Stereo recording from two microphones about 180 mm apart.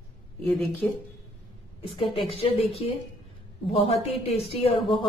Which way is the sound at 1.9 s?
30° left (ahead or behind).